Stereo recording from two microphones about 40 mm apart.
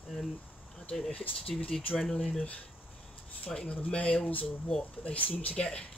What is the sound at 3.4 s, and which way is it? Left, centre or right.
Speech, left.